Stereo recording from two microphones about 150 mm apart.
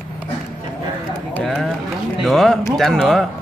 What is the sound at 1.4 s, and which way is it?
Speech, centre (ahead or behind).